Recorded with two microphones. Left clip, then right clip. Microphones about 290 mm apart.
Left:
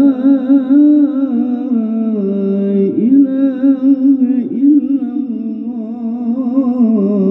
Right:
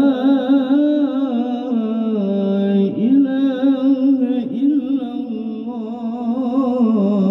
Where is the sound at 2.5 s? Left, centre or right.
Right.